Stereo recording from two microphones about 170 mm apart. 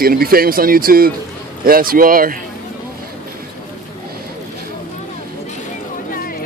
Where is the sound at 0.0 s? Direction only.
60° right (ahead or behind).